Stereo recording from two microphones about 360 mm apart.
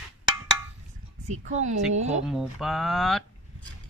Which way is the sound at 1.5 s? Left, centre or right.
Centre.